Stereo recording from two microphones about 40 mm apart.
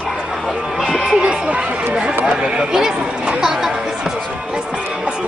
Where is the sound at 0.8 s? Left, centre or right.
Centre.